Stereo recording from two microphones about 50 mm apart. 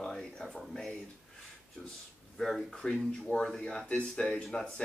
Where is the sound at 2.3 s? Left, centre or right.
Centre.